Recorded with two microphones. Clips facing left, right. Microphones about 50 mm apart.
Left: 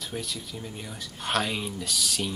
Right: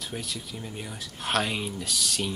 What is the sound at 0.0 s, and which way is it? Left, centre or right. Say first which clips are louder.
Speech: left 1 dB; centre.